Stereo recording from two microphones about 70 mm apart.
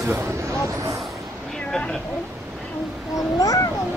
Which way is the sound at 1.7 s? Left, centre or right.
Centre.